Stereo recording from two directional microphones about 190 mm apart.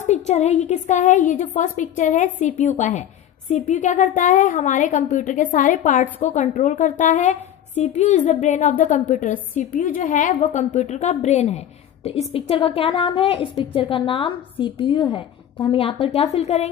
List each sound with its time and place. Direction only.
0.0 s a woman's voice: 35° left (ahead or behind)